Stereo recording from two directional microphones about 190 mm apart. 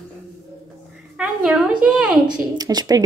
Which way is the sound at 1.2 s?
5° right (ahead or behind).